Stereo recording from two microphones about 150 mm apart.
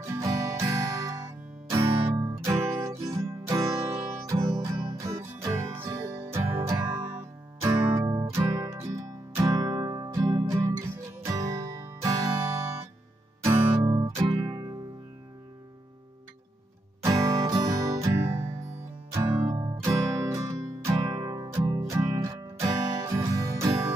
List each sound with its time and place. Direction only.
0.1 s music: 20° right (ahead or behind)
17.0 s music: 20° right (ahead or behind)